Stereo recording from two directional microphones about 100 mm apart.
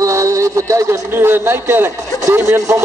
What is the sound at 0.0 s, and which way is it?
A man's voice, 30° right (ahead or behind).